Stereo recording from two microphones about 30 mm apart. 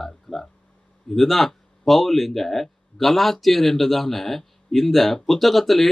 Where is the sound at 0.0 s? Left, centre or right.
Centre.